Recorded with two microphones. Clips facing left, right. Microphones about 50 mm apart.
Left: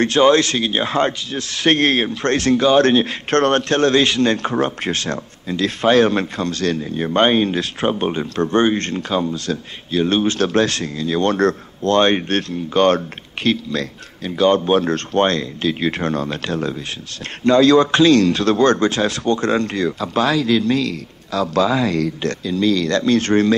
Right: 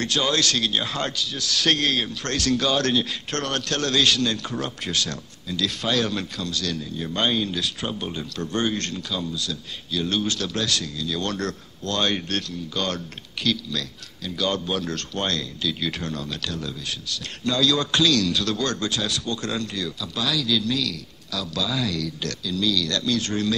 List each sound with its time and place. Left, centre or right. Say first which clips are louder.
0.0 s a man's voice: left 10 dB; left